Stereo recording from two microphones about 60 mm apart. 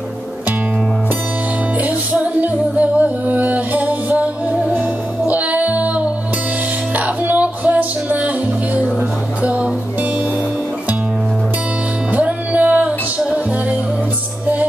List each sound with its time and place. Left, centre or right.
1.8 s music: right
9.4 s music: right
12.1 s music: right